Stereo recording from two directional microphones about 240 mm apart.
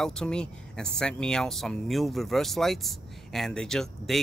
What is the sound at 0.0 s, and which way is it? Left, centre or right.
Speech, centre.